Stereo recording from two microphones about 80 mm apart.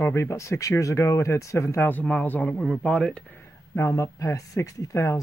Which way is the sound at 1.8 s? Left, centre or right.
Centre.